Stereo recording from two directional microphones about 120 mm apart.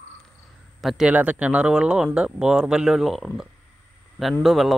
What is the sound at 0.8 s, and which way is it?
Speech, 5° right (ahead or behind).